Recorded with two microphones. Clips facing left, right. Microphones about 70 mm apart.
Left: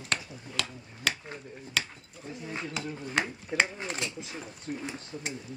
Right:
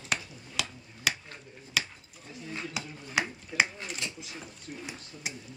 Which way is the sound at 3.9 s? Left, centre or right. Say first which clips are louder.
Left 3 dB; left.